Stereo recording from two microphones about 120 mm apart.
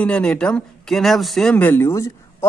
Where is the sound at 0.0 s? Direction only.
10° left (ahead or behind).